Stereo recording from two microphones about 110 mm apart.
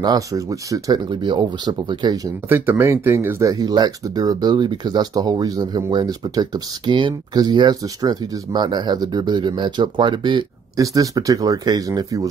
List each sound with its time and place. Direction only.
0.0 s speech: 35° right (ahead or behind)
2.5 s speech: 20° right (ahead or behind); by 10.4 s 45° right (ahead or behind)
10.8 s speech: 30° right (ahead or behind)